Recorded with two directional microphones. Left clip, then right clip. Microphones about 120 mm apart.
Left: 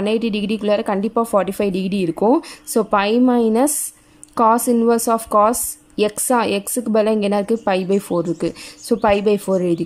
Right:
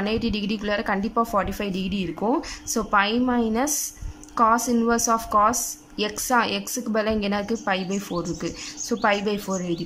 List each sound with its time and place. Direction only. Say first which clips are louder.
0.0 s a woman's voice: left 6 dB; 30° left (ahead or behind)